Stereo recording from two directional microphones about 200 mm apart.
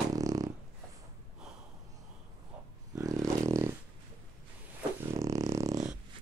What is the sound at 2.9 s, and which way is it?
Dog, 15° right (ahead or behind).